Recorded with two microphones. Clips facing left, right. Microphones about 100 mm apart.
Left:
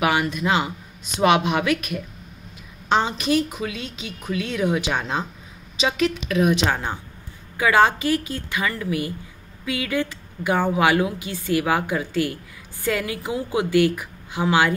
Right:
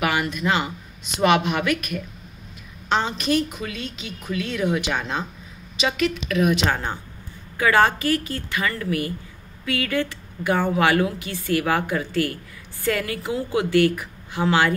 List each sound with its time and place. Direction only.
0.0 s a woman's voice: 20° left (ahead or behind)
3.7 s speech: 40° right (ahead or behind)
4.2 s speech: 15° left (ahead or behind)
5.8 s a woman's voice: 30° left (ahead or behind)
6.7 s speech: 10° left (ahead or behind)